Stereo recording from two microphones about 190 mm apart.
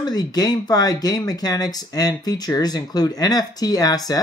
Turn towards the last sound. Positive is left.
turn(degrees=20)  # may be behind; listen again after turning